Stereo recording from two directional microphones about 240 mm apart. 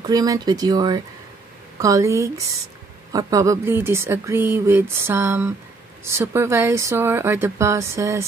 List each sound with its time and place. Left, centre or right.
0.0 s speech: centre